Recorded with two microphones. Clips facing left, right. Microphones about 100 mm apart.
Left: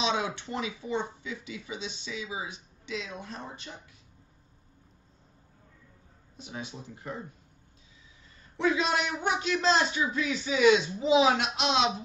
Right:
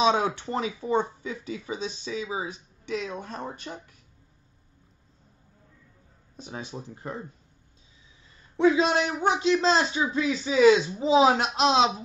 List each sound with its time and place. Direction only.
0.0 s speech: 45° right (ahead or behind)
6.3 s speech: 40° right (ahead or behind)
8.5 s speech: 30° right (ahead or behind)